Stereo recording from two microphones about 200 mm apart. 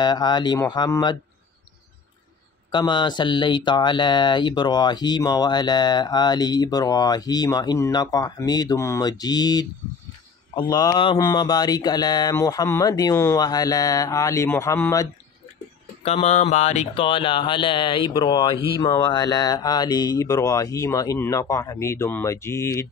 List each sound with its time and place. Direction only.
0.0 s speech: 20° left (ahead or behind)
2.7 s speech: 25° left (ahead or behind)
16.0 s speech: 30° left (ahead or behind); by 22.7 s 15° left (ahead or behind)